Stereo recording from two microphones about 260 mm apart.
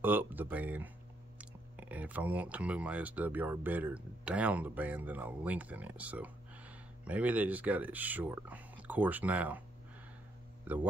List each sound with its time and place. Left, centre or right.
0.0 s speech: centre